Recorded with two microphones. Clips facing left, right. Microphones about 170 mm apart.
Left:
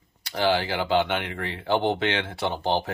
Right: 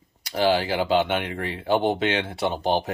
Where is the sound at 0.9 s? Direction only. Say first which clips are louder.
Even; 20° right (ahead or behind).